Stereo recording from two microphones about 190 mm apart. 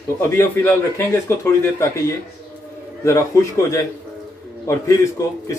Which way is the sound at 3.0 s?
15° left (ahead or behind).